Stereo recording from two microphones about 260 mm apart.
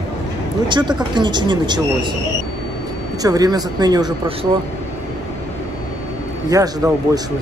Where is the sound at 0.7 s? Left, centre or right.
Centre.